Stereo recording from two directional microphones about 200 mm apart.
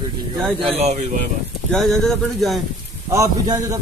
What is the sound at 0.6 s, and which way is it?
Speech, 30° right (ahead or behind).